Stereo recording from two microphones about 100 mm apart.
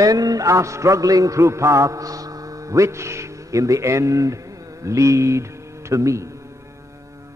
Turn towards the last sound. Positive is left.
turn(degrees=-30)  # may be behind; listen again after turning